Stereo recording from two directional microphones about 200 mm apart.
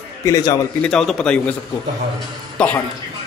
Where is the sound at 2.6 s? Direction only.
5° left (ahead or behind).